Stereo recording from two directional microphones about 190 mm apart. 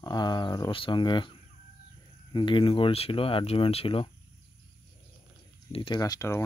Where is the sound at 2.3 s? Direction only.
25° left (ahead or behind).